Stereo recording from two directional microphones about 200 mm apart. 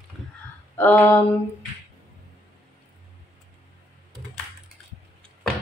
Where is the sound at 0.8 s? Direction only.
10° left (ahead or behind).